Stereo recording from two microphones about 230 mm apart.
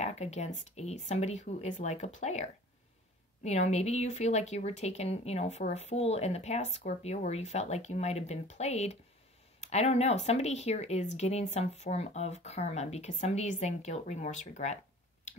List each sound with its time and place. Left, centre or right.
0.0 s a sound: left
0.7 s speech: left
3.4 s speech: left